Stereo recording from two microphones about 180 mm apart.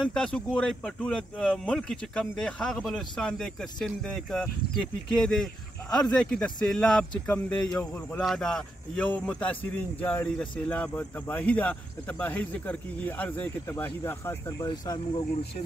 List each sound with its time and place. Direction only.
0.0 s speech: 5° left (ahead or behind)
14.7 s speech: 25° left (ahead or behind)